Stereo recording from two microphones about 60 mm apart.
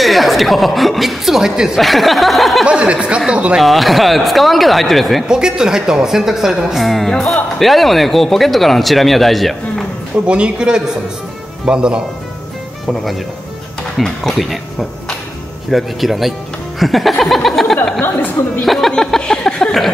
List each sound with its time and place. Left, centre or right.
0.0 s a woman's voice: centre
2.6 s speech: centre
3.5 s speech: centre
5.3 s a woman's voice: centre
10.2 s a woman's voice: centre
13.9 s speech: centre
17.2 s a sound: centre
18.6 s speech: centre